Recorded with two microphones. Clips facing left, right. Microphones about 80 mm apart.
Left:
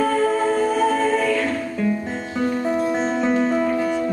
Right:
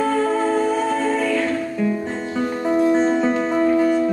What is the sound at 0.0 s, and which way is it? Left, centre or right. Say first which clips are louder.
Music: even; centre.